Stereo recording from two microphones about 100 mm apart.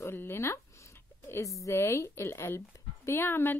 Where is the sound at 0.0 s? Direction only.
25° left (ahead or behind).